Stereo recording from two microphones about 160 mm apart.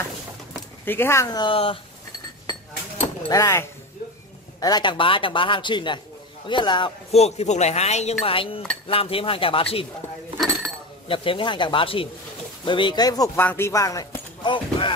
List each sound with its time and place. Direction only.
0.8 s a man's voice: 15° left (ahead or behind); by 1.8 s 35° left (ahead or behind)
3.3 s a man's voice: 20° left (ahead or behind)
7.1 s speech: 40° left (ahead or behind)
11.1 s a man's voice: 35° left (ahead or behind)
13.4 s speech: 15° left (ahead or behind); by 14.9 s 30° left (ahead or behind)